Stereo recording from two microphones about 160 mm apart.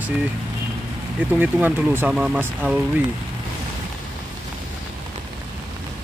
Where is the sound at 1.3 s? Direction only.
10° right (ahead or behind).